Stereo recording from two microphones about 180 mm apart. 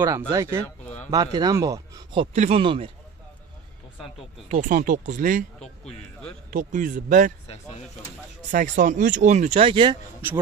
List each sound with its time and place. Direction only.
0.3 s speech: 15° right (ahead or behind)
2.3 s speech: 40° right (ahead or behind)
2.6 s speech: 30° right (ahead or behind)
4.5 s speech: 45° right (ahead or behind)
5.6 s a man's voice: 5° left (ahead or behind)
6.5 s speech: 45° right (ahead or behind)
8.5 s speech: 45° right (ahead or behind); by 9.9 s 25° right (ahead or behind)